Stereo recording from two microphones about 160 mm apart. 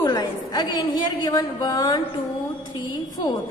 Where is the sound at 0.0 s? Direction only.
25° left (ahead or behind).